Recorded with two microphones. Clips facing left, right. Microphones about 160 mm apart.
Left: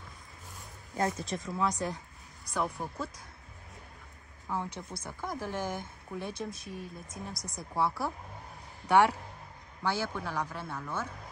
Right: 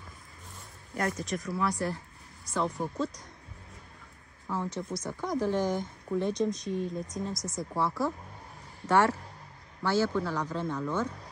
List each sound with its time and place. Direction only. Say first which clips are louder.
0.9 s speech: even; 25° left (ahead or behind)
4.5 s speech: right 3 dB; 15° left (ahead or behind)